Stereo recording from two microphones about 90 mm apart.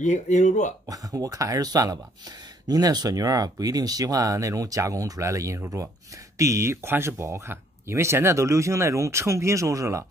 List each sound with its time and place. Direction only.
0.8 s speech: 40° right (ahead or behind)